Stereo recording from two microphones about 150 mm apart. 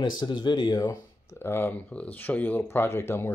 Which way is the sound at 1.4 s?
15° left (ahead or behind).